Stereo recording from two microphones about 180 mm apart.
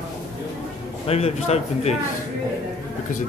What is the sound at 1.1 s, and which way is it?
Speech, 35° left (ahead or behind).